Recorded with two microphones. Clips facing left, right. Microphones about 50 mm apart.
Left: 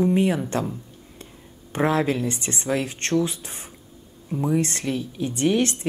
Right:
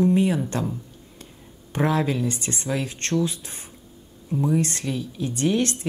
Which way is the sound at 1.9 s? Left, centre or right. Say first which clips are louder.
Left 1 dB; left.